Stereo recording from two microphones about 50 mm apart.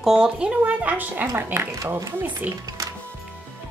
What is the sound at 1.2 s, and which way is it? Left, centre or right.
Speech, right.